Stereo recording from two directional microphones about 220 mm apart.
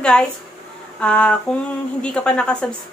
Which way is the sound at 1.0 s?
5° left (ahead or behind).